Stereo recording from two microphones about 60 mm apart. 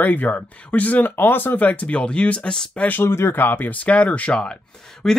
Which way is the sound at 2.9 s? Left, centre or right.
Left.